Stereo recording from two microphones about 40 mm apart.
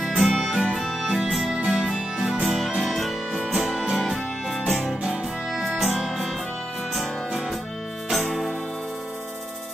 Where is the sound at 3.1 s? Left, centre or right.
Centre.